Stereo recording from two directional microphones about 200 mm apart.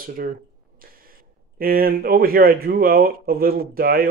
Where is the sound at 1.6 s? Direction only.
45° right (ahead or behind).